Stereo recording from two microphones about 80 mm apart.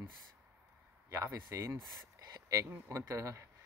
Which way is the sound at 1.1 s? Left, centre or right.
Right.